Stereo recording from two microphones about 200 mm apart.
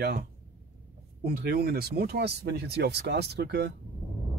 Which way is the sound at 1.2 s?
50° right (ahead or behind).